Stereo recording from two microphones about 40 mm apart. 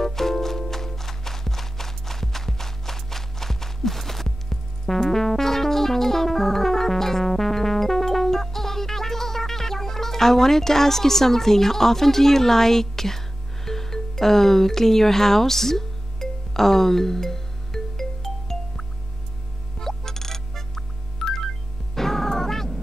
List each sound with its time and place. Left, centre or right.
0.0 s music: centre
13.7 s speech: centre
17.9 s music: centre